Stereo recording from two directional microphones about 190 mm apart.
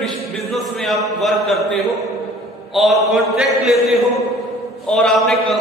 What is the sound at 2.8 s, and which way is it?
A man's voice, centre (ahead or behind).